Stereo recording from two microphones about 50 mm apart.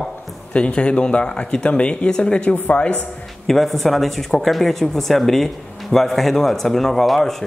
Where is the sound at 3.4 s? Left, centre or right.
Centre.